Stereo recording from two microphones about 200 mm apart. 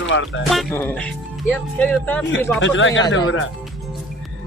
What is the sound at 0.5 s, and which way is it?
Music, centre (ahead or behind).